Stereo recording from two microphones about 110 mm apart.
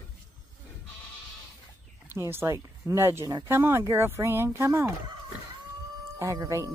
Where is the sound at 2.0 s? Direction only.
20° right (ahead or behind).